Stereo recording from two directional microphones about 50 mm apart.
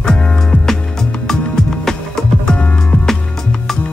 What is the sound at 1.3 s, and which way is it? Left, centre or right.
Music, centre.